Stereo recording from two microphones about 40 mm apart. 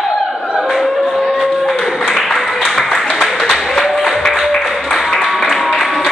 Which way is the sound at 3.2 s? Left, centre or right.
Centre.